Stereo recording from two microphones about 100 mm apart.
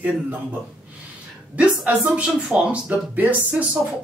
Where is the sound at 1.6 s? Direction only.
15° right (ahead or behind).